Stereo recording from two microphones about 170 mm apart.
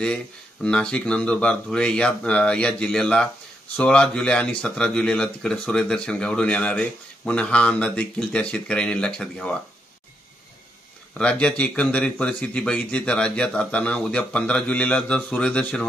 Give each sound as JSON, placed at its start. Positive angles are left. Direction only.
{"t": 0.0, "sound": "speech", "side_deg": 5}
{"t": 11.1, "sound": "speech", "side_deg": 5}